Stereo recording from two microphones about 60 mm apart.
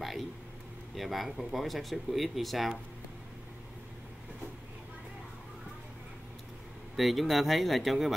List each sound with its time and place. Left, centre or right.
0.9 s speech: centre
7.0 s speech: centre